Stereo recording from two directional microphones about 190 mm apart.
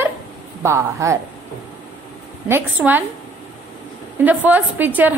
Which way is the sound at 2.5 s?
10° right (ahead or behind).